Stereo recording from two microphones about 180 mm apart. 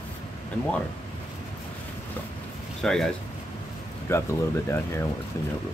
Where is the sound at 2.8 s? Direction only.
5° left (ahead or behind).